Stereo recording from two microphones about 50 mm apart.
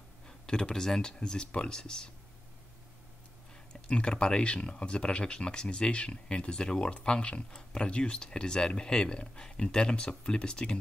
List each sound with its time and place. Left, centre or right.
0.3 s speech: centre
3.8 s speech: centre